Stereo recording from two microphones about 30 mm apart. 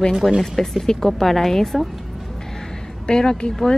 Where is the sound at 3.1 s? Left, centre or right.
Left.